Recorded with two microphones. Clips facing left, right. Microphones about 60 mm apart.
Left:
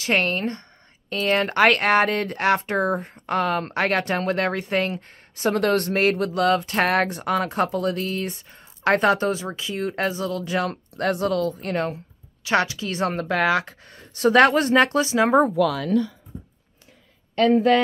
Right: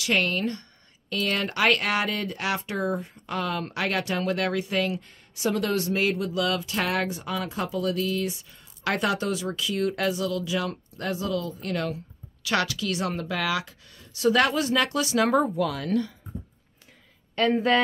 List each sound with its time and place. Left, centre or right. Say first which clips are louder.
0.0 s a woman's voice: left 3 dB; left
11.6 s a woman's voice: left 4 dB; left